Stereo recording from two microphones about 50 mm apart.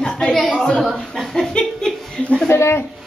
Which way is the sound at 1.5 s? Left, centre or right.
Centre.